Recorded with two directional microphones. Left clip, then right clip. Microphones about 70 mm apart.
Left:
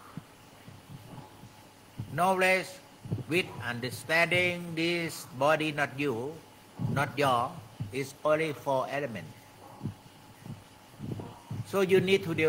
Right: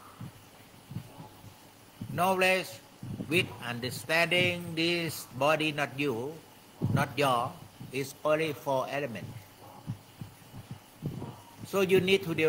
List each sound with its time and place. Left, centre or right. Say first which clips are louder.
2.1 s a man's voice: left 1 dB; centre
4.3 s a man's voice: even; centre
11.7 s a man's voice: even; centre